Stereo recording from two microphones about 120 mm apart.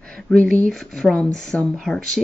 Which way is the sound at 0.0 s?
10° left (ahead or behind).